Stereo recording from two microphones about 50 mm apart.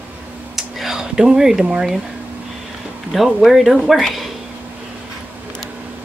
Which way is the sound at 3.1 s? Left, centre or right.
Centre.